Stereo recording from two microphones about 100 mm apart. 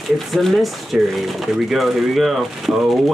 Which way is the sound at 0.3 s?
Centre (ahead or behind).